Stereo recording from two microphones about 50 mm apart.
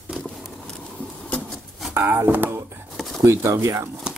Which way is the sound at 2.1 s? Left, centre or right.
Right.